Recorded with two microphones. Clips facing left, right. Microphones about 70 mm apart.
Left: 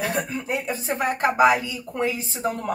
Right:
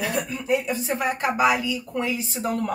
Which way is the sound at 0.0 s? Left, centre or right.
Left.